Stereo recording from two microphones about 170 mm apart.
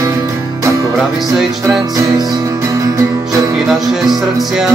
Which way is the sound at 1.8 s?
20° right (ahead or behind).